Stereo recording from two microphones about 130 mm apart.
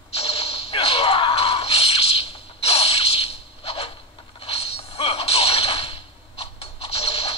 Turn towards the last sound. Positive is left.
turn(degrees=50)  # may be behind; listen again after turning